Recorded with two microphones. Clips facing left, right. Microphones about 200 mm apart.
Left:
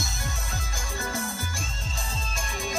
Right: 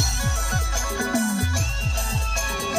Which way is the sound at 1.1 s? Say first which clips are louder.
Right 13 dB; 75° right (ahead or behind).